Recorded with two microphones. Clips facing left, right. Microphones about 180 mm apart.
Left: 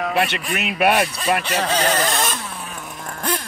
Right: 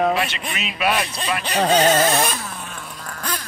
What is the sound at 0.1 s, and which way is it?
Speech, 60° left (ahead or behind).